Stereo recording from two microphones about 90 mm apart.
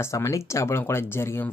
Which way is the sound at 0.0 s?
35° left (ahead or behind).